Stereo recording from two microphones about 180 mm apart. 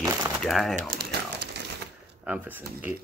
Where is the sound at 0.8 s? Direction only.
55° right (ahead or behind).